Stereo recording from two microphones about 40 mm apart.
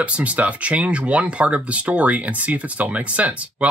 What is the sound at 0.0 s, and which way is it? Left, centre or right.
Speech, right.